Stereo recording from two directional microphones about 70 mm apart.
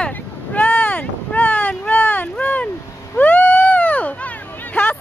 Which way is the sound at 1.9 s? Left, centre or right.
Left.